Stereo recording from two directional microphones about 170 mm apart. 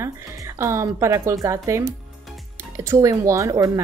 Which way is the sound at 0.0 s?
15° right (ahead or behind).